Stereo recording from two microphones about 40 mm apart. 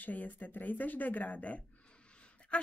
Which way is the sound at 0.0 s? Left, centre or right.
Left.